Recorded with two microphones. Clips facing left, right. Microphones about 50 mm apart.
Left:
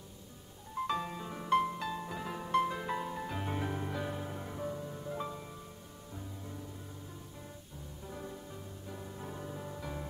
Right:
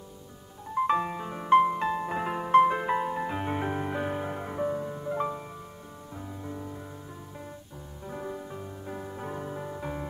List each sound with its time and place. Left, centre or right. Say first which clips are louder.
0.7 s music: right 9 dB; right
8.1 s music: right 9 dB; right